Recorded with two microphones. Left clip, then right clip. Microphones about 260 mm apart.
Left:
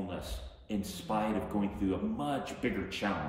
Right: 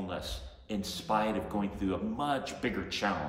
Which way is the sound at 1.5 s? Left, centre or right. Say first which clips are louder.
Even; centre.